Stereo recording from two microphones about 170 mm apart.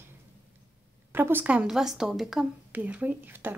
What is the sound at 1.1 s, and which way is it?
A woman's voice, 10° right (ahead or behind).